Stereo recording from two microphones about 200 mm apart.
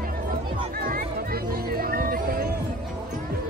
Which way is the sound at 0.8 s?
50° right (ahead or behind).